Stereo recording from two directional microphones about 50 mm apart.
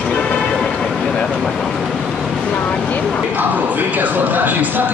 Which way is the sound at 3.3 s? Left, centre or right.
Right.